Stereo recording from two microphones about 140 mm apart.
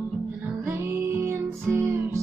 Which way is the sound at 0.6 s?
15° right (ahead or behind).